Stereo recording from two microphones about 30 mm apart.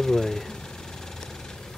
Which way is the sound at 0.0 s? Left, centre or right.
Centre.